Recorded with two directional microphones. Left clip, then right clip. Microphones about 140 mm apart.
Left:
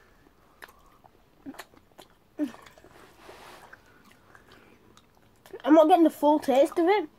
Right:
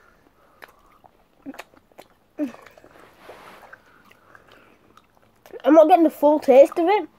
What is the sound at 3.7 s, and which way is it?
Boat, centre (ahead or behind).